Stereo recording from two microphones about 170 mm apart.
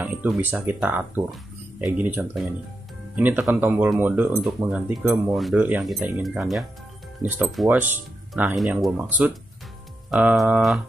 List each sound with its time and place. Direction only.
0.0 s speech: 10° right (ahead or behind)
7.2 s speech: 10° right (ahead or behind)